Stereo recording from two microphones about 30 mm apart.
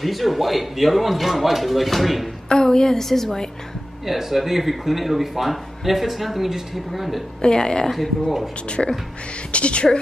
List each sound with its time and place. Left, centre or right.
0.0 s speech: centre
2.5 s a woman's voice: left
4.0 s speech: centre
7.4 s a woman's voice: left
8.6 s a woman's voice: left